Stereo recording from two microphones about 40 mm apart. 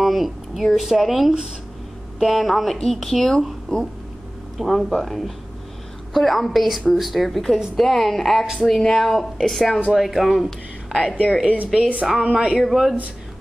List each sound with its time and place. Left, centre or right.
0.0 s a woman's voice: centre
4.6 s a woman's voice: centre
10.9 s a woman's voice: centre
11.4 s speech: right
12.2 s speech: right
12.5 s a woman's voice: centre